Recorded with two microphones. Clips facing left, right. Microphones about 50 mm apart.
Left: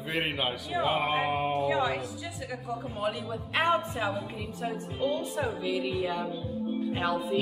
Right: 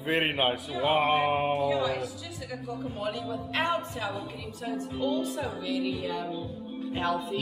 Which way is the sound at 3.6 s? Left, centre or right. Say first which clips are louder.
Left 5 dB; left.